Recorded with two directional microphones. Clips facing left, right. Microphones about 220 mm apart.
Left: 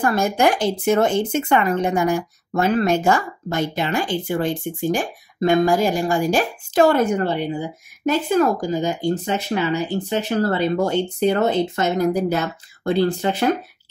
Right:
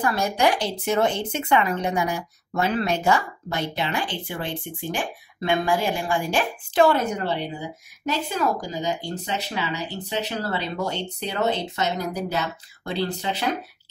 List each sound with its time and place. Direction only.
0.0 s speech: 50° left (ahead or behind)